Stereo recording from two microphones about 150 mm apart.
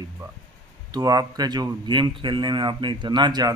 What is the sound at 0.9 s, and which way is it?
Speech, 25° right (ahead or behind).